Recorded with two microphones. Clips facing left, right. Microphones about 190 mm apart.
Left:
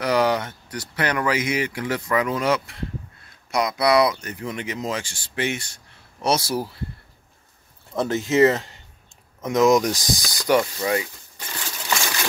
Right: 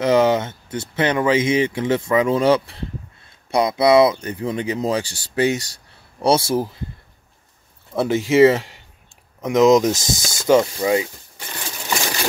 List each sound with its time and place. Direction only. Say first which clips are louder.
0.0 s speech: right 5 dB; 25° right (ahead or behind)
7.9 s speech: right 4 dB; 10° right (ahead or behind)